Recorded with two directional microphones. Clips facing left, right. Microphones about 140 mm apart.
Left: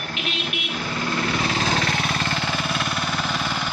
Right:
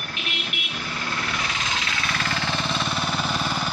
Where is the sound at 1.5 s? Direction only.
40° left (ahead or behind).